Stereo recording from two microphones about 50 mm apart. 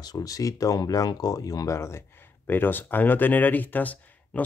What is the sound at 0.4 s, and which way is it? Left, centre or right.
Speech, left.